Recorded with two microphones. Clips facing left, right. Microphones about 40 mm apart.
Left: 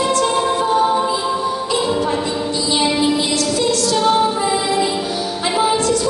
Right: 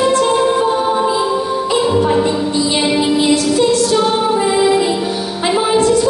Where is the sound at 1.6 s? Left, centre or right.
Right.